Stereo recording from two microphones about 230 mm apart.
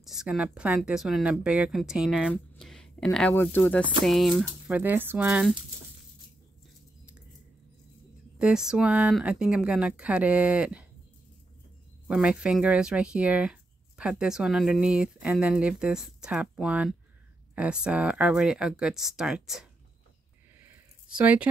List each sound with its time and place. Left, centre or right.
0.0 s speech: centre
8.4 s speech: centre
12.1 s speech: centre
20.6 s a sound: centre